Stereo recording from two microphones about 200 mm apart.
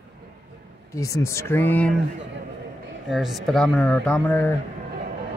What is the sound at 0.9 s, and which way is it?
Speech, 15° left (ahead or behind).